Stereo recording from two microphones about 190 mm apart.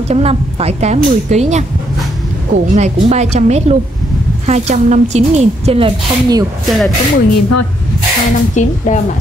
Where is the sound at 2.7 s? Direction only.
35° right (ahead or behind).